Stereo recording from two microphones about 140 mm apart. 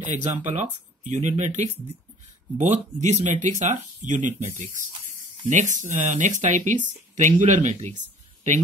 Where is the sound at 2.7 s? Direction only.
60° right (ahead or behind).